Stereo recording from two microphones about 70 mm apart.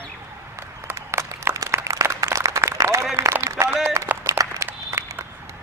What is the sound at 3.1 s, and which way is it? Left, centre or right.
Run, right.